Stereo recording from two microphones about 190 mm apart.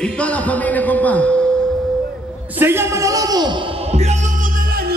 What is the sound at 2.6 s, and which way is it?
A man's voice, 15° right (ahead or behind).